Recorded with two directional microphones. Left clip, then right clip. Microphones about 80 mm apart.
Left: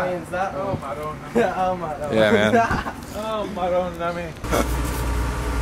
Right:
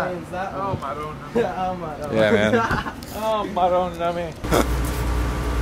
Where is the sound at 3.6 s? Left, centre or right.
Centre.